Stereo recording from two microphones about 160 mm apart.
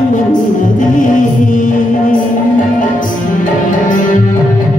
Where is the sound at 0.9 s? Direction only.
55° left (ahead or behind).